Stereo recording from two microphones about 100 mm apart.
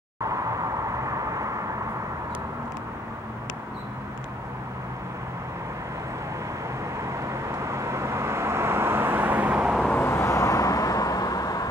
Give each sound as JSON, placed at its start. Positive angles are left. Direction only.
{"t": 0.3, "sound": "vehicle", "side_deg": -35}
{"t": 7.6, "sound": "vehicle", "side_deg": -30}
{"t": 9.8, "sound": "vehicle", "side_deg": 20}